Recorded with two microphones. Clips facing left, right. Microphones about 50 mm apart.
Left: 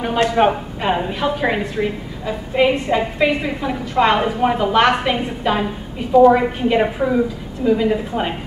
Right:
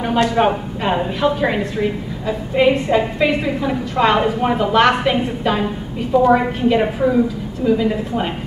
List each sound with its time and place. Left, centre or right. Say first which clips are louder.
0.4 s a woman's voice: even; centre
6.7 s a woman's voice: right 2 dB; centre